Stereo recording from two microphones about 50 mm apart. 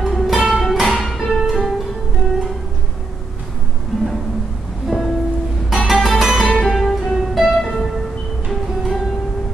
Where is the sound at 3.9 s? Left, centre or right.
Centre.